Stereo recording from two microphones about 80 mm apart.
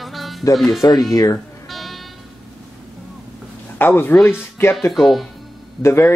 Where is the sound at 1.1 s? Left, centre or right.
Left.